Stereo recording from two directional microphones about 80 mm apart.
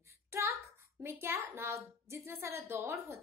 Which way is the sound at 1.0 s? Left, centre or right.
Right.